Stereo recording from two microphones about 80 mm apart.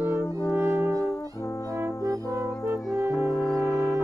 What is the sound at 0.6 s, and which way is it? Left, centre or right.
Brass instrument, right.